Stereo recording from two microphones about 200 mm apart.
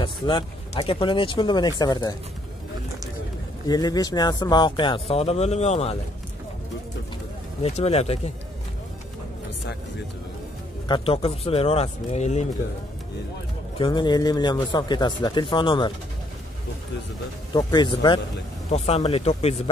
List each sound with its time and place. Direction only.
0.0 s speech: 25° left (ahead or behind)
3.6 s speech: 20° left (ahead or behind)
7.6 s speech: 30° left (ahead or behind)
10.9 s speech: 30° left (ahead or behind)
13.7 s speech: 25° left (ahead or behind)
17.6 s speech: 20° left (ahead or behind)